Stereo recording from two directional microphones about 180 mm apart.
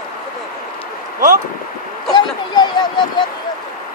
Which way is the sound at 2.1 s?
25° left (ahead or behind).